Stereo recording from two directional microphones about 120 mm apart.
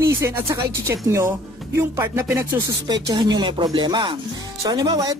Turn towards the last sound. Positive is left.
turn(degrees=-30)  # may be behind; listen again after turning